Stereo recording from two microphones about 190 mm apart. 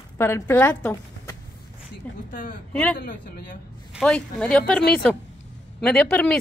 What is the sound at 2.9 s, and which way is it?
Speech, 45° left (ahead or behind).